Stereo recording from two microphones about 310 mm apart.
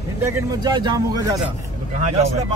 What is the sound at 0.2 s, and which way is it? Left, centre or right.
Speech, centre.